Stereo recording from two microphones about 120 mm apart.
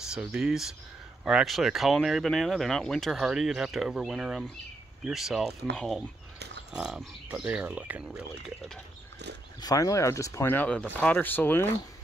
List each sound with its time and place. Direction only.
0.0 s speech: 5° right (ahead or behind)
9.6 s speech: 30° left (ahead or behind); by 11.6 s 15° left (ahead or behind)